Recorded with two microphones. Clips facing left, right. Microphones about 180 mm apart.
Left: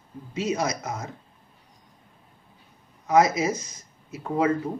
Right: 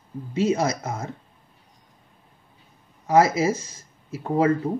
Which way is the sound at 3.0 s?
30° right (ahead or behind).